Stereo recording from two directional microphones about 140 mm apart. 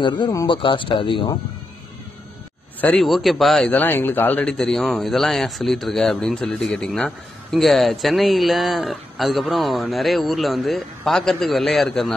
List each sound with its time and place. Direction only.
0.0 s speech: 35° left (ahead or behind)
2.8 s a man's voice: 5° left (ahead or behind)